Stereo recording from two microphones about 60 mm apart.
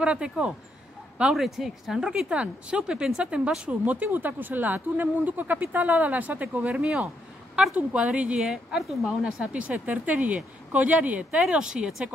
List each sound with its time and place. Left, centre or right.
0.0 s a woman's voice: centre
1.3 s a woman's voice: centre
2.2 s speech: centre
8.4 s a woman's voice: centre
9.5 s a woman's voice: right